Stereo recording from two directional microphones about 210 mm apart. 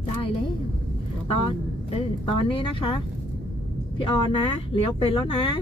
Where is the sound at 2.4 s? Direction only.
25° left (ahead or behind).